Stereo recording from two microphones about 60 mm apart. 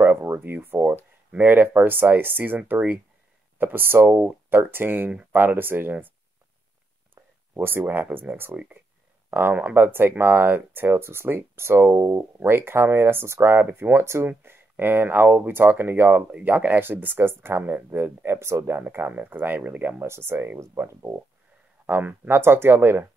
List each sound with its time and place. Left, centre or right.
0.0 s speech: right
7.2 s speech: right
11.9 s speech: right
12.2 s speech: right
13.9 s speech: right
14.2 s speech: right
19.7 s speech: right
20.0 s speech: right
21.8 s speech: right